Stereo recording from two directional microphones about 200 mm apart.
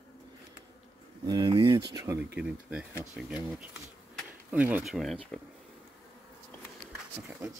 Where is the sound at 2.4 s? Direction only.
5° right (ahead or behind).